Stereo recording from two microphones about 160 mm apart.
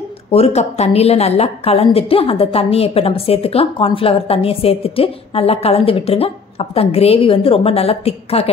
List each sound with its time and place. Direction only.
0.3 s a woman's voice: 40° left (ahead or behind)